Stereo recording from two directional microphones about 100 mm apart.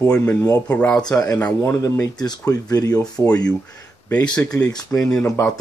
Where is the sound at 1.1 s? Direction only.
30° left (ahead or behind).